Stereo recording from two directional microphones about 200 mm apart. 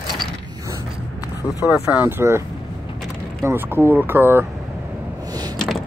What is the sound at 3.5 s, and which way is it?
Speech, 10° right (ahead or behind).